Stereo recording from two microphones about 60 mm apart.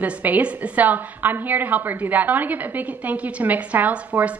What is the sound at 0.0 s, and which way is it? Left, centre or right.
A woman's voice, right.